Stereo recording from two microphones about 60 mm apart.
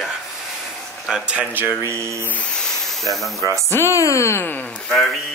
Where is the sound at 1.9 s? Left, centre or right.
Right.